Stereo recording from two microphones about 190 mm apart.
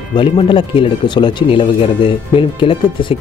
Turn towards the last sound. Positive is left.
turn(degrees=25)  # may be behind; listen again after turning